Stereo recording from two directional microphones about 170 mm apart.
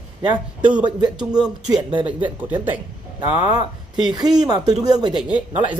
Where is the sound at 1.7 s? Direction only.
25° right (ahead or behind).